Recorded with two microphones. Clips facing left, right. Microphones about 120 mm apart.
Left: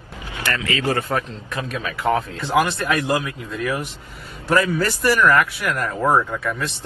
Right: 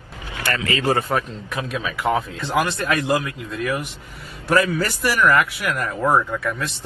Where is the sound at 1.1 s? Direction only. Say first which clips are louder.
Right 1 dB; 10° right (ahead or behind).